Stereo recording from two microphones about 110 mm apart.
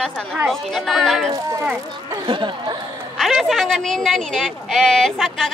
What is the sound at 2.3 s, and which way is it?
Speech, 45° right (ahead or behind).